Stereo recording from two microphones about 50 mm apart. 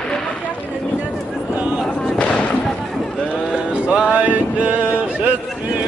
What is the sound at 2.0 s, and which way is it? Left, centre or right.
Fireworks, centre.